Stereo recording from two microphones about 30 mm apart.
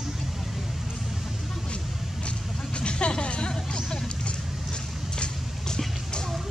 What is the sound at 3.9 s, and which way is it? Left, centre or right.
Vehicle, left.